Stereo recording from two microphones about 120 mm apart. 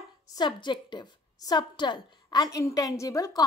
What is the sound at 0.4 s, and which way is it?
A woman's voice, 40° left (ahead or behind).